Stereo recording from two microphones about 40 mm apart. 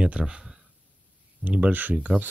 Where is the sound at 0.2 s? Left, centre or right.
Centre.